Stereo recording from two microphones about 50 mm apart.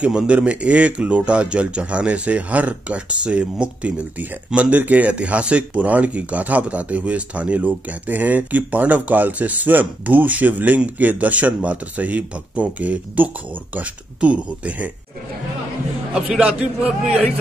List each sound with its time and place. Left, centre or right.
0.0 s speech: centre
16.1 s a man's voice: centre